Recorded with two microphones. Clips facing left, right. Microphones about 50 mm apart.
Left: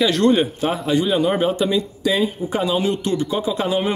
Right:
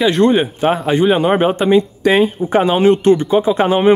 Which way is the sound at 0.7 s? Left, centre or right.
Right.